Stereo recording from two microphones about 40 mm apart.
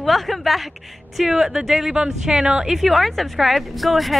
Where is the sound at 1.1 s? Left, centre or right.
Centre.